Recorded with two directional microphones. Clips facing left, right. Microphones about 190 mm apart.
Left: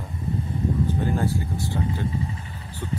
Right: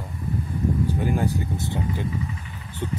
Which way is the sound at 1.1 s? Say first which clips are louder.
Right 1 dB; 15° right (ahead or behind).